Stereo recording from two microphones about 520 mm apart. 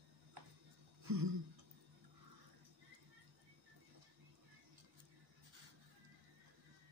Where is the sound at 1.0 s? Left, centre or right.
Right.